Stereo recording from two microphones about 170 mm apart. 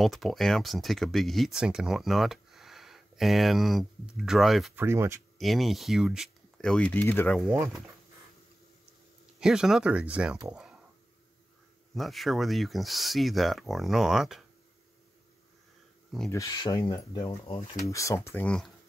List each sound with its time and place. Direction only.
0.0 s speech: centre (ahead or behind)
4.7 s speech: 15° right (ahead or behind)
5.4 s speech: centre (ahead or behind)
9.4 s speech: 5° right (ahead or behind)
10.5 s a sound: 5° right (ahead or behind)
11.9 s speech: centre (ahead or behind)
16.3 s speech: 20° left (ahead or behind)
17.5 s speech: 35° left (ahead or behind)
17.8 s speech: 20° left (ahead or behind)